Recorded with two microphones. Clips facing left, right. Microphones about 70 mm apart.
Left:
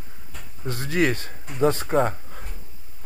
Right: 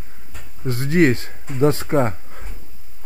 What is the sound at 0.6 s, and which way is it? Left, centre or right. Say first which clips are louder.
A man's voice: right 6 dB; right.